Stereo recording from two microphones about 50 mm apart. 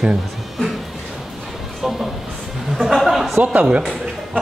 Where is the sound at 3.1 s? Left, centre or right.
Centre.